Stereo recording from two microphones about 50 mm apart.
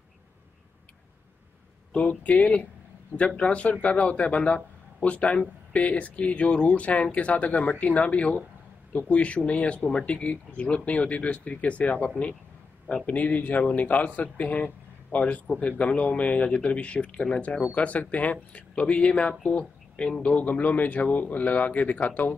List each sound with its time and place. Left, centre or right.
1.9 s a man's voice: left
17.6 s a man's voice: left
20.2 s speech: left